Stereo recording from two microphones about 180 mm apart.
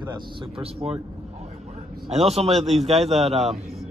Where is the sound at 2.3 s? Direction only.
35° right (ahead or behind).